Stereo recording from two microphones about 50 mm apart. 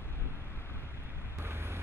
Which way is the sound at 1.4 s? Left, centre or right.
Right.